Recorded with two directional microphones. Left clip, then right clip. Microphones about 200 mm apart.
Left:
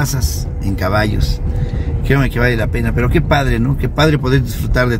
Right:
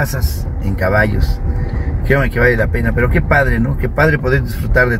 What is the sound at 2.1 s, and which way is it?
Speech, 15° left (ahead or behind).